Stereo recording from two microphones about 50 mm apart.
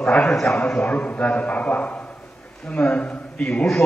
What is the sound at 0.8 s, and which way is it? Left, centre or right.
A man's voice, left.